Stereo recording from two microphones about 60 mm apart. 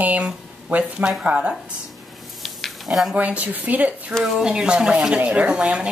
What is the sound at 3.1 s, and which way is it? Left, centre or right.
Speech, right.